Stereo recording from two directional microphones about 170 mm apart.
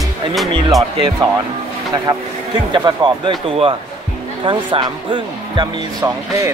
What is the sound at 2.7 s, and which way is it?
Speech, 25° right (ahead or behind).